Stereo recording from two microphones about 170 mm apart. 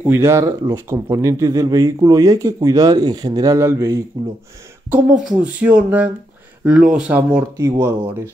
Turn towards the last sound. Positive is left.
turn(degrees=-20)  # may be behind; listen again after turning